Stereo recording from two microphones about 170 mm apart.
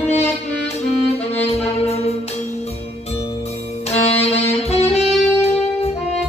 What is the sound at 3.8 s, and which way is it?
Saxophone, 35° left (ahead or behind).